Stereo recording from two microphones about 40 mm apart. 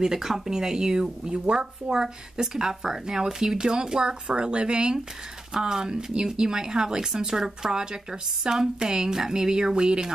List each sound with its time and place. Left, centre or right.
0.0 s speech: centre